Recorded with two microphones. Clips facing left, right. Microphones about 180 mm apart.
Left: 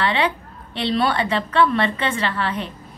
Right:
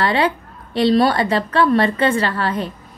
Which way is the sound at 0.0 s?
40° right (ahead or behind).